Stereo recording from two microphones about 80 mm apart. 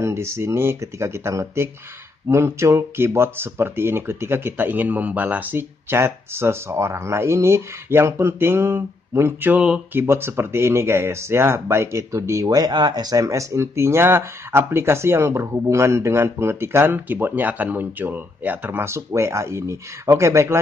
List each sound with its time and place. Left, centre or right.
0.0 s speech: right